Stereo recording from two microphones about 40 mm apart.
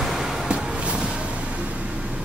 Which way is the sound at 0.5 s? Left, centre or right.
Right.